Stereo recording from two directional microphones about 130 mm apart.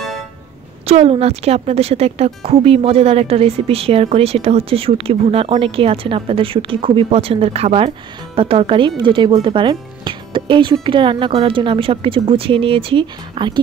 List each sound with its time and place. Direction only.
0.8 s a woman's voice: 55° right (ahead or behind)